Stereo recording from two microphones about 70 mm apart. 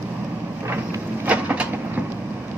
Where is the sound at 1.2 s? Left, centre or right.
Right.